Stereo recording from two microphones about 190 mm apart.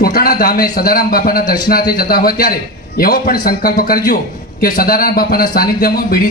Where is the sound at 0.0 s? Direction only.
50° left (ahead or behind).